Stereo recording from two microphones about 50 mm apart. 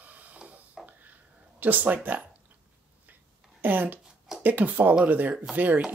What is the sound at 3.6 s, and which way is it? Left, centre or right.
Speech, right.